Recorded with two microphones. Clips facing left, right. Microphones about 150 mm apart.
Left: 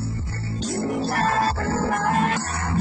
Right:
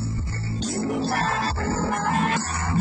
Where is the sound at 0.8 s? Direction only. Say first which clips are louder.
Even; centre (ahead or behind).